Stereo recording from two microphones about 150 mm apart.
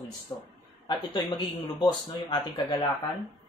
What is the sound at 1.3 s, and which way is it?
Speech, 30° left (ahead or behind).